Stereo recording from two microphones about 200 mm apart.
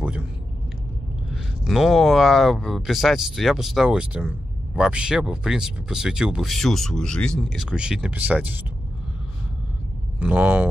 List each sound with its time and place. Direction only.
1.3 s speech: centre (ahead or behind)
10.1 s speech: 5° right (ahead or behind)